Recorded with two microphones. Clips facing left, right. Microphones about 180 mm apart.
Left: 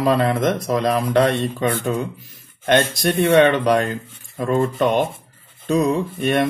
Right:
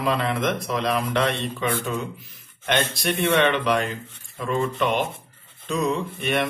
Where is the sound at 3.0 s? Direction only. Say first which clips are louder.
Left 6 dB; 40° left (ahead or behind).